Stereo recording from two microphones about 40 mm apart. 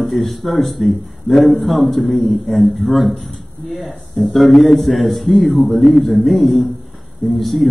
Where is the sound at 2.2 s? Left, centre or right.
Centre.